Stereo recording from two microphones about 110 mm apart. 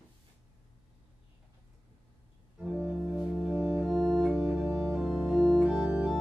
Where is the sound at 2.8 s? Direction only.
20° right (ahead or behind).